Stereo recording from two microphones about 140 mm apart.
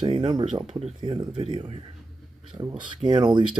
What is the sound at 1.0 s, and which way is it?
Speech, 35° right (ahead or behind).